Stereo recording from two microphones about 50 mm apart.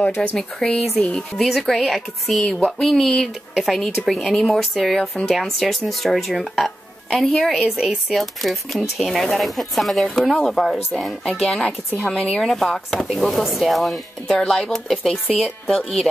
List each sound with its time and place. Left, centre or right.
0.2 s speech: centre
1.4 s speech: centre
7.6 s speech: centre
8.1 s speech: centre
14.3 s speech: centre